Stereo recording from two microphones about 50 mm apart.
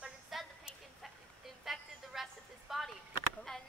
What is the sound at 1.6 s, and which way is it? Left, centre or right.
Music, centre.